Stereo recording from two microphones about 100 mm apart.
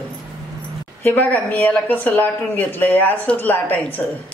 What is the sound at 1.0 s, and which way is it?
A woman's voice, 20° left (ahead or behind).